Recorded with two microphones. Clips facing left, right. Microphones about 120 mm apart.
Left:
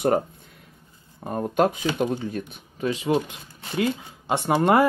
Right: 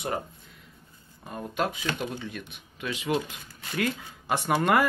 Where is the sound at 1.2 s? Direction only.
50° left (ahead or behind).